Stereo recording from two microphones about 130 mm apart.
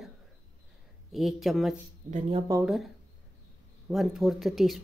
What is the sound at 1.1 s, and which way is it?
Speech, centre (ahead or behind).